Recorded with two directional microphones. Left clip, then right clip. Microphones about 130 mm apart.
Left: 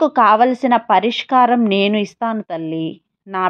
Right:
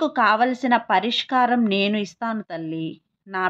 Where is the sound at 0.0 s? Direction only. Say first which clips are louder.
Left 7 dB; 40° left (ahead or behind).